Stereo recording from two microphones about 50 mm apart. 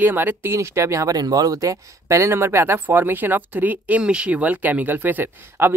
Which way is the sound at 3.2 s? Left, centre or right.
Right.